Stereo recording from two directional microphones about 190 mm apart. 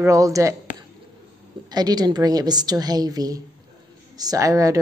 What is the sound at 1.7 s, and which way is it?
A woman's voice, 20° right (ahead or behind).